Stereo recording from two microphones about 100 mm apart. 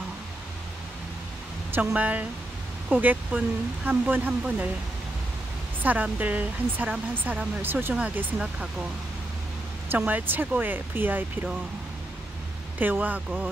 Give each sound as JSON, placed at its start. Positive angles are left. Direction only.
{"t": 2.0, "sound": "speech", "side_deg": -15}
{"t": 5.8, "sound": "speech", "side_deg": -15}
{"t": 7.9, "sound": "speech", "side_deg": -10}
{"t": 9.8, "sound": "speech", "side_deg": -15}
{"t": 12.7, "sound": "speech", "side_deg": -20}